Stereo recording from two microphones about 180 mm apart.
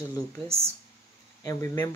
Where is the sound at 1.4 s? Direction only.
20° left (ahead or behind).